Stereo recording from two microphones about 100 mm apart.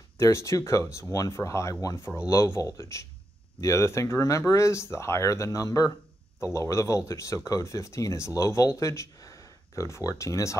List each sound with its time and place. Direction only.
0.2 s speech: 30° left (ahead or behind)